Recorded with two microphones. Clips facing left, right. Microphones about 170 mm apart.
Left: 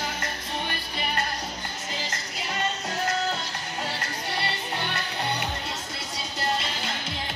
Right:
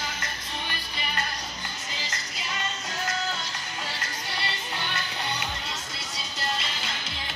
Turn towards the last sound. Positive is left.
turn(degrees=50)  # may be behind; listen again after turning